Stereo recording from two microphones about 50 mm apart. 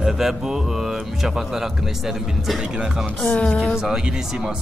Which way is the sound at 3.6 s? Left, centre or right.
Centre.